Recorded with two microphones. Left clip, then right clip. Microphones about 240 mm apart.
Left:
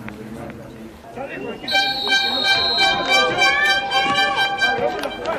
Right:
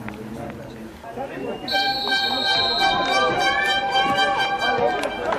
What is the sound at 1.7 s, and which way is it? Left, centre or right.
Speech, centre.